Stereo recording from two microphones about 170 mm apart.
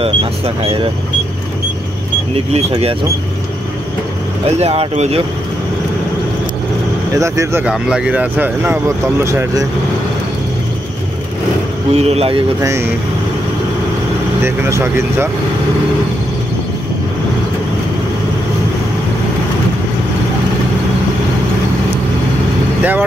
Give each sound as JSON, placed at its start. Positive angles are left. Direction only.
{"t": 0.0, "sound": "speech", "side_deg": -30}
{"t": 2.3, "sound": "speech", "side_deg": -35}
{"t": 4.5, "sound": "speech", "side_deg": -40}
{"t": 7.2, "sound": "speech", "side_deg": -20}
{"t": 7.6, "sound": "speech", "side_deg": -5}
{"t": 11.9, "sound": "speech", "side_deg": -35}
{"t": 12.6, "sound": "speech", "side_deg": -15}
{"t": 14.4, "sound": "speech", "side_deg": -15}